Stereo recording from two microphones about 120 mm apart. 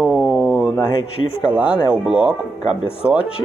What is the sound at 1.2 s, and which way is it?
Speech, 45° left (ahead or behind).